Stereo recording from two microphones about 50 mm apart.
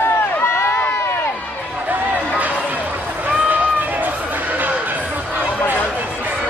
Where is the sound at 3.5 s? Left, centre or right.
Right.